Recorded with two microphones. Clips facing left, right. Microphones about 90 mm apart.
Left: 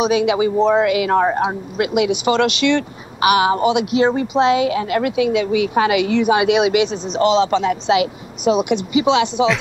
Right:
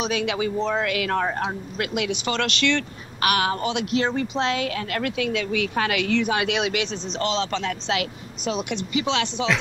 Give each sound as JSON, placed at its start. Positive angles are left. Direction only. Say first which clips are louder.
{"t": 0.0, "sound": "speech", "louder": "left 9 dB", "side_deg": 10}